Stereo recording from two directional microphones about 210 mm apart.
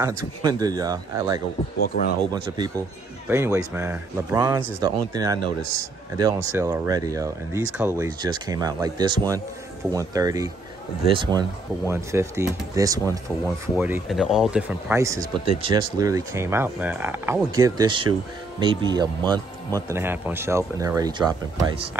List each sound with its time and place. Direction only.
0.0 s speech: 15° right (ahead or behind)
1.8 s speech: 45° left (ahead or behind)
2.5 s speech: 20° right (ahead or behind); by 15.0 s 5° right (ahead or behind)
15.0 s speech: 15° right (ahead or behind)